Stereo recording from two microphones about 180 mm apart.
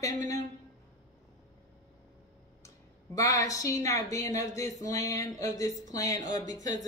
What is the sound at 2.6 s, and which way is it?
A woman's voice, 20° left (ahead or behind).